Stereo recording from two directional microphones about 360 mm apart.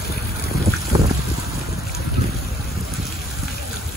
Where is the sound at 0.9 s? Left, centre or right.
Centre.